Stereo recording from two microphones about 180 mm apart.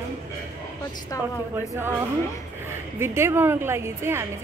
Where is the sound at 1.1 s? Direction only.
20° left (ahead or behind).